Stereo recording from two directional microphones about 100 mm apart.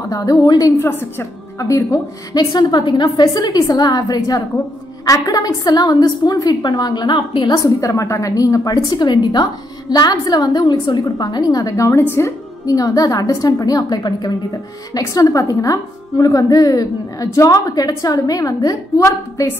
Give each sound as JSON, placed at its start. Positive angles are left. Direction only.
{"t": 0.1, "sound": "a woman's voice", "side_deg": 35}
{"t": 7.6, "sound": "a woman's voice", "side_deg": 30}
{"t": 12.6, "sound": "a woman's voice", "side_deg": 35}